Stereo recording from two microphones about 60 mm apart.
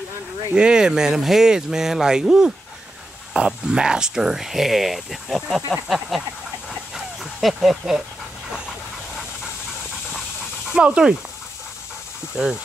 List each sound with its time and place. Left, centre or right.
0.6 s speech: centre
5.9 s a sound: centre
6.7 s dog: centre
10.7 s speech: centre
12.4 s speech: centre